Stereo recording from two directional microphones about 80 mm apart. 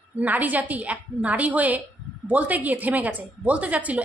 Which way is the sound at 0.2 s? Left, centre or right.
Centre.